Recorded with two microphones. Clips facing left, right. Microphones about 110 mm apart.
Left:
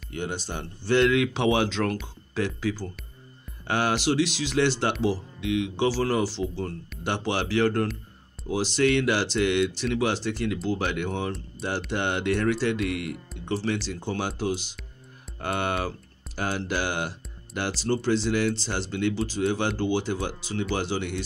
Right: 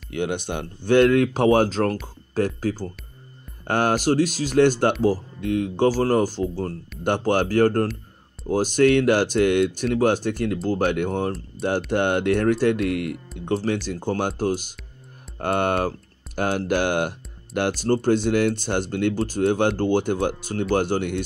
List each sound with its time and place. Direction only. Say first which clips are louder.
0.1 s speech: right 6 dB; 60° right (ahead or behind)
11.6 s speech: right 8 dB; centre (ahead or behind)
11.9 s speech: right 5 dB; 50° right (ahead or behind)
16.3 s mantra: right 6 dB; 55° right (ahead or behind)
17.6 s speech: right 6 dB; 50° right (ahead or behind)